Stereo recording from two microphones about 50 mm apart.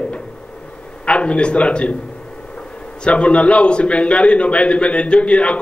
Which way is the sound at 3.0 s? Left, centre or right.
Left.